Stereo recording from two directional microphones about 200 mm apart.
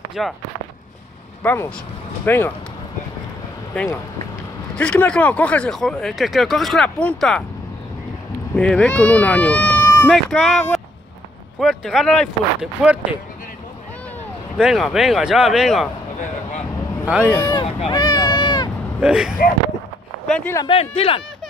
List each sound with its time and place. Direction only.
0.2 s speech: centre (ahead or behind)
1.4 s speech: 10° left (ahead or behind)
3.7 s speech: 10° left (ahead or behind)
8.5 s speech: 5° left (ahead or behind)
14.6 s speech: centre (ahead or behind)
17.1 s speech: 5° right (ahead or behind)
17.4 s speech: 20° left (ahead or behind)
17.7 s a sound: 25° left (ahead or behind)
18.9 s speech: 5° right (ahead or behind)
20.5 s speech: 25° left (ahead or behind)